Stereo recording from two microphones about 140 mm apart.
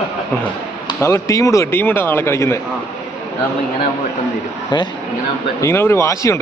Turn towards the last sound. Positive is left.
turn(degrees=20)  # may be behind; listen again after turning